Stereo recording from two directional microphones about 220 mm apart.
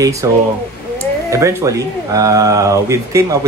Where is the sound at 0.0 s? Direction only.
15° right (ahead or behind).